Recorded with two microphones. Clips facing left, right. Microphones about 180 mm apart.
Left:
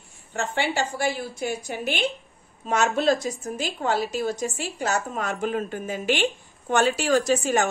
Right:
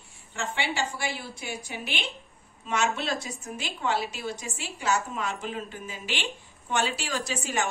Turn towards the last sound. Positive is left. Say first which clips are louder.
# left 10 dB
turn(degrees=45)  # may be behind; listen again after turning